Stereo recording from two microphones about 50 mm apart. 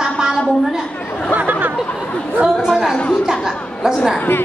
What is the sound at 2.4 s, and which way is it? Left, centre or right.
A woman's voice, centre.